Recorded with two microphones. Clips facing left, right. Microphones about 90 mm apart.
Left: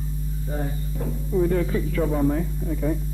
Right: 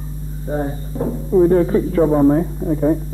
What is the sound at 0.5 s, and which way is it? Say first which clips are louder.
Speech: right 9 dB; 35° right (ahead or behind).